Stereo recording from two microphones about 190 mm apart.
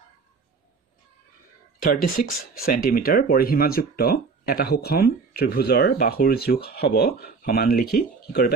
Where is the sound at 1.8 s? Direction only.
50° left (ahead or behind).